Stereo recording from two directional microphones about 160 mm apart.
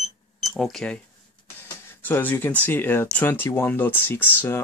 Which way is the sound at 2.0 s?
10° left (ahead or behind).